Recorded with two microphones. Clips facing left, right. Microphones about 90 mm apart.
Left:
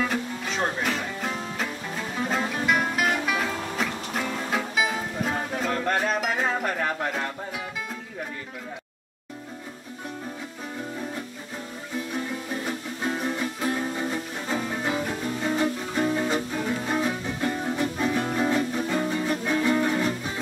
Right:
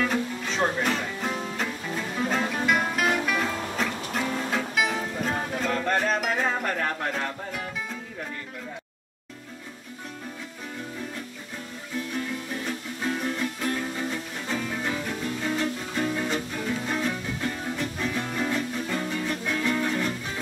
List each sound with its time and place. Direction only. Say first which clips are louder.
0.1 s music: right 1 dB; centre (ahead or behind)
4.6 s music: left 2 dB; 5° left (ahead or behind)
12.1 s music: left 1 dB; 15° left (ahead or behind)